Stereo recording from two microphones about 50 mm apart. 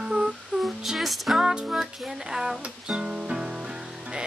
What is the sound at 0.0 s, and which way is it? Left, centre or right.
Music, centre.